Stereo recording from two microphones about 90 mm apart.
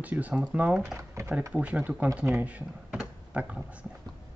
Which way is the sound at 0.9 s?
35° right (ahead or behind).